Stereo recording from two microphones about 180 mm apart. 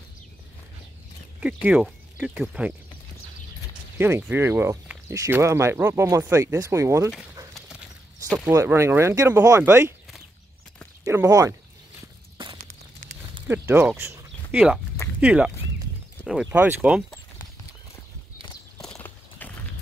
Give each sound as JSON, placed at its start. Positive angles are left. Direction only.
{"t": 1.4, "sound": "speech", "side_deg": -5}
{"t": 4.0, "sound": "speech", "side_deg": -10}
{"t": 8.5, "sound": "speech", "side_deg": -15}
{"t": 11.1, "sound": "speech", "side_deg": -20}
{"t": 13.5, "sound": "speech", "side_deg": -10}
{"t": 18.8, "sound": "clip-clop", "side_deg": 5}